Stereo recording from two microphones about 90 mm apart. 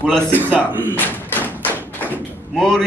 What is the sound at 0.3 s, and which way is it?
Speech, 20° right (ahead or behind).